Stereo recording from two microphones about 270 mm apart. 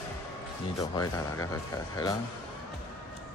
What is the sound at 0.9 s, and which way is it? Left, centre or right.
Speech, centre.